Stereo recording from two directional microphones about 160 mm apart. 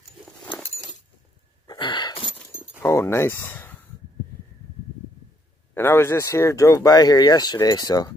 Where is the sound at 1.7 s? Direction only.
30° left (ahead or behind).